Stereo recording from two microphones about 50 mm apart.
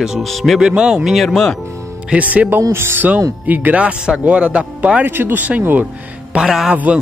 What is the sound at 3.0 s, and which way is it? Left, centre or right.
Speech, right.